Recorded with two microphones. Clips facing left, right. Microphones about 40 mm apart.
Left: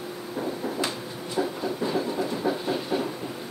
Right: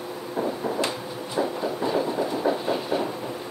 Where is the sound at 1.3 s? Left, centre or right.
Centre.